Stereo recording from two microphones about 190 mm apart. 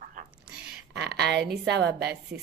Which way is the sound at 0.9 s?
65° right (ahead or behind).